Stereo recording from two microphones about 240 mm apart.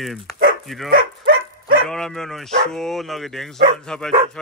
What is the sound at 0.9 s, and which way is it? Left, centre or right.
Dog, right.